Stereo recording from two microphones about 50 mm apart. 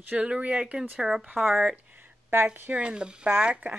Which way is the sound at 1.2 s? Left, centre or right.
Right.